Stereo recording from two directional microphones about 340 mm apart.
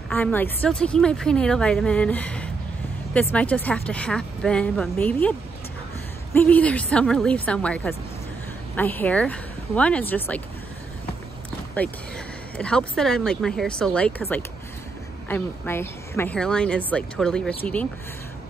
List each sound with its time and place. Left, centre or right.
0.1 s a woman's voice: centre
6.3 s a woman's voice: centre
11.8 s a woman's voice: centre